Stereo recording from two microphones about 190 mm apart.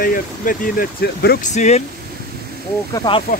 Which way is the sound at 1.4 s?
35° left (ahead or behind).